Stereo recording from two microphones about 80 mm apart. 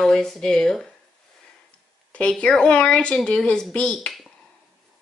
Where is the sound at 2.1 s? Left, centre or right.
Centre.